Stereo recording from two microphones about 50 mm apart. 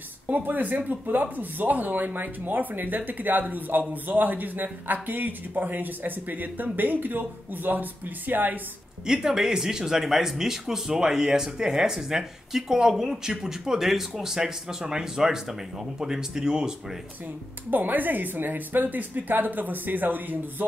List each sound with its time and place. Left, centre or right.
0.3 s a man's voice: right
9.0 s speech: centre
17.6 s a man's voice: right